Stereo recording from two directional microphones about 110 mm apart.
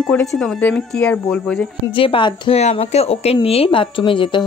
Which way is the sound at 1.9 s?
50° left (ahead or behind).